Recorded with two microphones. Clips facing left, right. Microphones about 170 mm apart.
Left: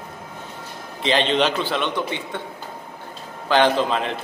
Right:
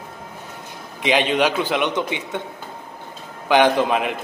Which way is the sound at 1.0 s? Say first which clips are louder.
Right 1 dB; 10° right (ahead or behind).